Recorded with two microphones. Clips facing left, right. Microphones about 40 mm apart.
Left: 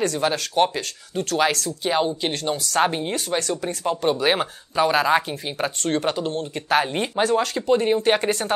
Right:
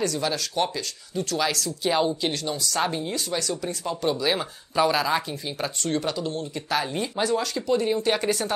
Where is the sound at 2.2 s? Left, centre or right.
Left.